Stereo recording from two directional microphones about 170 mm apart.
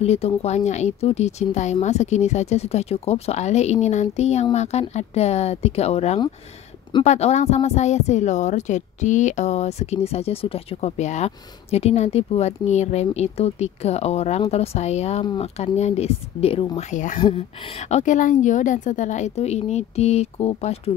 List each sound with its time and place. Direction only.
0.0 s speech: 40° left (ahead or behind)
16.7 s speech: 45° left (ahead or behind)
17.2 s speech: 30° left (ahead or behind)